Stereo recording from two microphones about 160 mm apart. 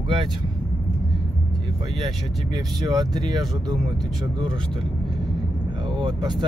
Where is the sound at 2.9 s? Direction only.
25° right (ahead or behind).